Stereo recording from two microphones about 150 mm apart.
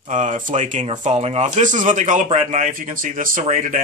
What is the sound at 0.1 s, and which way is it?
Speech, 60° right (ahead or behind).